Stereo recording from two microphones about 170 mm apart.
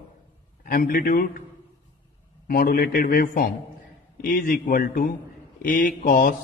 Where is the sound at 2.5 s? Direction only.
60° left (ahead or behind).